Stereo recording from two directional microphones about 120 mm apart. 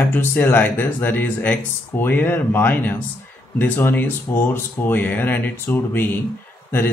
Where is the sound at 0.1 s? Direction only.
15° left (ahead or behind).